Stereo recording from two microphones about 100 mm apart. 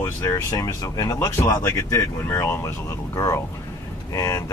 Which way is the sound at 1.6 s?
25° left (ahead or behind).